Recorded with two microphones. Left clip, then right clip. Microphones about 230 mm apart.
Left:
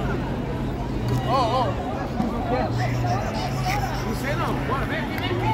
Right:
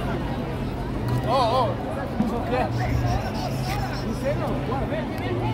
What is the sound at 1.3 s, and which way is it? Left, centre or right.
Speech, centre.